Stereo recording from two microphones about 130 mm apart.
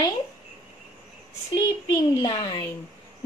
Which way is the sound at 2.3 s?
40° left (ahead or behind).